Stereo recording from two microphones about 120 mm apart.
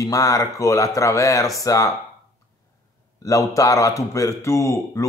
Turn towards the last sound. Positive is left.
turn(degrees=25)  # may be behind; listen again after turning